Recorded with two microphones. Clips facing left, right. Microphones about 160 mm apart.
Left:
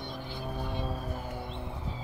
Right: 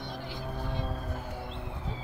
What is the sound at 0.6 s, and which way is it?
Music, 5° left (ahead or behind).